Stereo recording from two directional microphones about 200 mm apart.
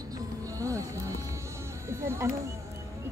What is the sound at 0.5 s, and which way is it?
Speech, 15° right (ahead or behind).